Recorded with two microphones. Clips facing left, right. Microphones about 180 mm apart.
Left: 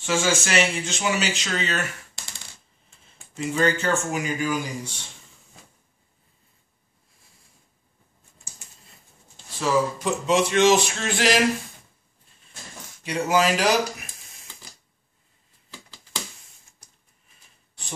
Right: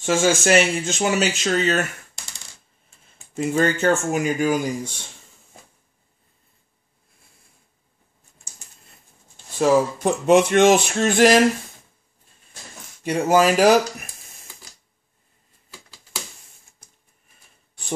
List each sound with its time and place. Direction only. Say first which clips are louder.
0.0 s speech: right 5 dB; 45° right (ahead or behind)
3.3 s speech: right 3 dB; 50° right (ahead or behind)
9.6 s speech: right 5 dB; 50° right (ahead or behind)
13.0 s speech: right 5 dB; 50° right (ahead or behind)